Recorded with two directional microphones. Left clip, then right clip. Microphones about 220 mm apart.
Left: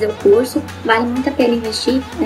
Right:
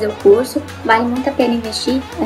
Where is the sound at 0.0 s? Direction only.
5° right (ahead or behind).